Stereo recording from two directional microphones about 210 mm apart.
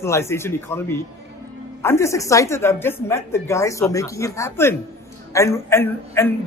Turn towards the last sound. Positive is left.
turn(degrees=10)  # may be behind; listen again after turning